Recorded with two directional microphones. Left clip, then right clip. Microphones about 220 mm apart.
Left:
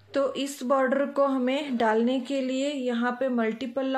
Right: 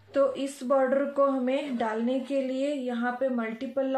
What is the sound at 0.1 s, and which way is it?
A woman's voice, 45° left (ahead or behind).